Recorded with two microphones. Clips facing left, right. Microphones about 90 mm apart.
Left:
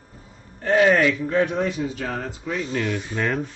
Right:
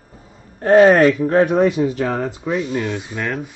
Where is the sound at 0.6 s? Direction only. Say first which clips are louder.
Right 7 dB; 40° right (ahead or behind).